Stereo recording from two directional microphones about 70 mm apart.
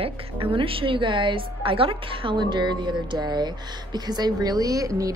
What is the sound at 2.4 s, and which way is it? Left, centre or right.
Speech, right.